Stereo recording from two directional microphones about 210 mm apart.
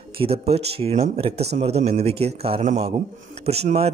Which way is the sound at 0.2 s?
30° right (ahead or behind).